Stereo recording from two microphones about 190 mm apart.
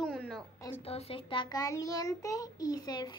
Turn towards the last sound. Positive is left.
turn(degrees=20)  # may be behind; listen again after turning